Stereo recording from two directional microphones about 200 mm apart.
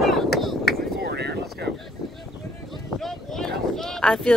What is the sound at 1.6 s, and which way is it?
Vehicle, 60° right (ahead or behind).